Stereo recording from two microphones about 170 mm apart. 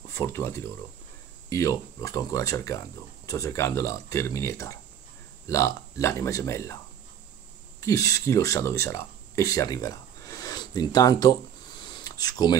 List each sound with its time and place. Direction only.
0.1 s speech: 15° left (ahead or behind)
7.8 s speech: 20° left (ahead or behind)